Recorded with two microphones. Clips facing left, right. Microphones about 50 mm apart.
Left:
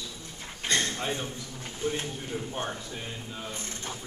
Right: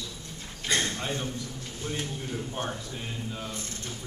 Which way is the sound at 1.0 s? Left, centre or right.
Centre.